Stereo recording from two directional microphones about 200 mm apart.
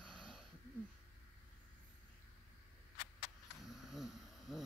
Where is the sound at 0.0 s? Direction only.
25° right (ahead or behind).